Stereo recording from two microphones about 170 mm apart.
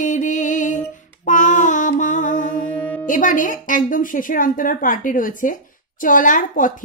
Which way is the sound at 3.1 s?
50° left (ahead or behind).